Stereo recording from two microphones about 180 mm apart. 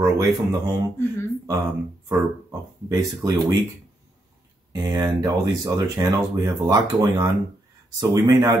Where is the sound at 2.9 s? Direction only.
20° right (ahead or behind).